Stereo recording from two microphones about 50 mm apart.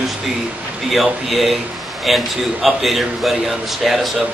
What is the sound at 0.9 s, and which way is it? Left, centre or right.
A man's voice, centre.